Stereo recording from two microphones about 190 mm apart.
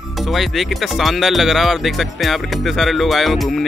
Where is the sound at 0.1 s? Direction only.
Centre (ahead or behind).